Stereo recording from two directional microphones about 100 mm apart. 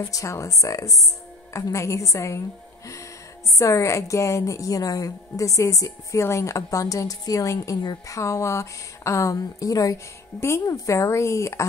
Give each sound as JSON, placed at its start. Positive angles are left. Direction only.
{"t": 0.0, "sound": "a woman's voice", "side_deg": 30}
{"t": 3.5, "sound": "a woman's voice", "side_deg": 30}
{"t": 8.2, "sound": "a woman's voice", "side_deg": 30}